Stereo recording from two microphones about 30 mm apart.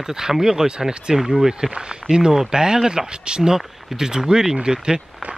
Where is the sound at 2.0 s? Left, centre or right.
Centre.